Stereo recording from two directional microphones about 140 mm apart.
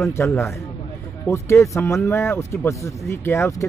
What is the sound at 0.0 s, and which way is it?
Speech, 20° left (ahead or behind).